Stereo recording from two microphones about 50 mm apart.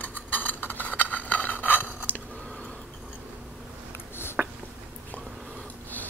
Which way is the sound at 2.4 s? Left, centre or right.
Left.